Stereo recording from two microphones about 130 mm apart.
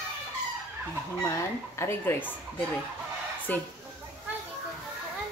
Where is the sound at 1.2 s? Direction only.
20° left (ahead or behind).